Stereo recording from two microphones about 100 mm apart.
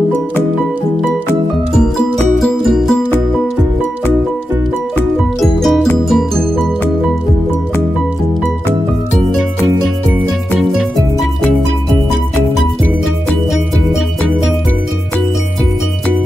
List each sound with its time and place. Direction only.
1.8 s music: 5° left (ahead or behind)
5.4 s music: centre (ahead or behind)